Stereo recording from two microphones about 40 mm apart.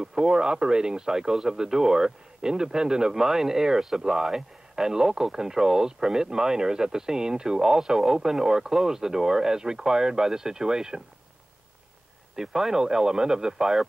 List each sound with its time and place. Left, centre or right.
0.0 s speech: centre
12.4 s speech: centre